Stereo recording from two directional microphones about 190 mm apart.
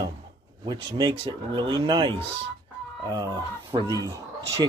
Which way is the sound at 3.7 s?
20° right (ahead or behind).